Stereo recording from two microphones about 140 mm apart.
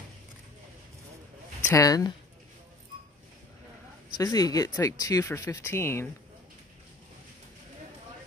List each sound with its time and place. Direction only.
1.7 s speech: 25° left (ahead or behind)
4.1 s speech: 30° left (ahead or behind)